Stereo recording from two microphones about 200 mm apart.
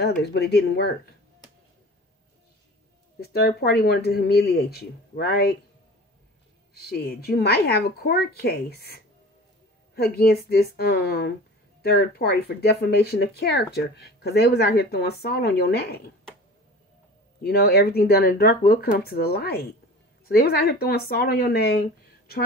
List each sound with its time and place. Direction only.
0.0 s speech: 55° left (ahead or behind)
3.2 s speech: 50° left (ahead or behind)
6.7 s speech: 50° left (ahead or behind)
9.9 s speech: 50° left (ahead or behind)
17.4 s speech: 50° left (ahead or behind)